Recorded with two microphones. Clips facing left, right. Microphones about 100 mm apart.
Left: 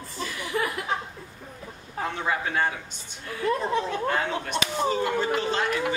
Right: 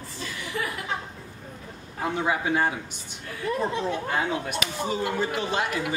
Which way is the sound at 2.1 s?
15° right (ahead or behind).